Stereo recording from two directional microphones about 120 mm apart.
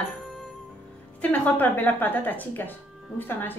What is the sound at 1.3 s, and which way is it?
A woman's voice, 15° left (ahead or behind).